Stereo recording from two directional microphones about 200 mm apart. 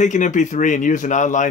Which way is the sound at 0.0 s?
40° left (ahead or behind).